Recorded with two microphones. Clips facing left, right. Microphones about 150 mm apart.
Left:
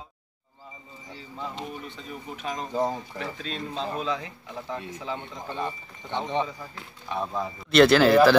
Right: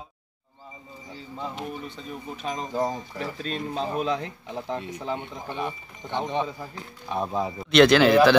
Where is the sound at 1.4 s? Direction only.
5° right (ahead or behind).